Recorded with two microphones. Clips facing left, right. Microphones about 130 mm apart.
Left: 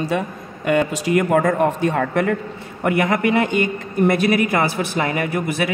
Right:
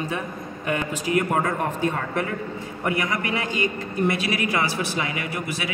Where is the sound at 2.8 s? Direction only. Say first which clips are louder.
Left 8 dB; 65° left (ahead or behind).